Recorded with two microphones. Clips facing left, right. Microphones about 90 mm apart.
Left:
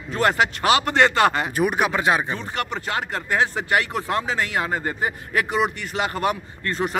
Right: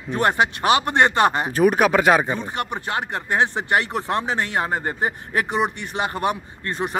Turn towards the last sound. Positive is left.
turn(degrees=-20)  # may be behind; listen again after turning